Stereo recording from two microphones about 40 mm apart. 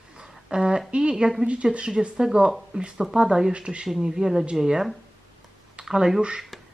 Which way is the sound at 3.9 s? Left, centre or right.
Centre.